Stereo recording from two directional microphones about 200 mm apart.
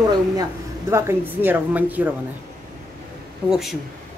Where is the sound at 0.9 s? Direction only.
10° right (ahead or behind).